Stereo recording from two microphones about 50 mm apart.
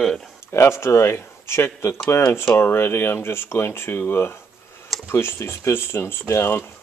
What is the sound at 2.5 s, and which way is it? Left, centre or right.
Speech, left.